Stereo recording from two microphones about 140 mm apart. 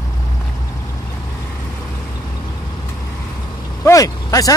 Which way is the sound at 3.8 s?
20° left (ahead or behind).